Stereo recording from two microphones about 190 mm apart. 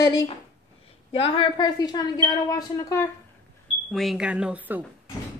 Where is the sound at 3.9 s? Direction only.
Centre (ahead or behind).